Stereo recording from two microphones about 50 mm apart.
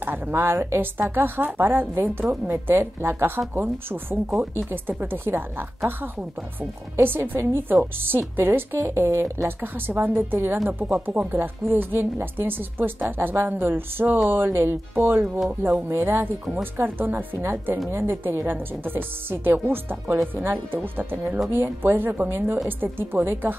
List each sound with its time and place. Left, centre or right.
0.0 s a woman's voice: right
7.0 s a woman's voice: right
8.7 s speech: right
9.6 s a woman's voice: right
15.2 s speech: centre
15.9 s a woman's voice: right